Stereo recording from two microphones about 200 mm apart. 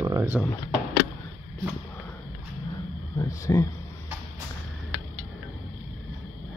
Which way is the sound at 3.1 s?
15° left (ahead or behind).